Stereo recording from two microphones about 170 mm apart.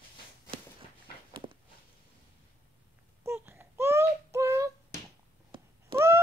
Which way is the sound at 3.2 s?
15° right (ahead or behind).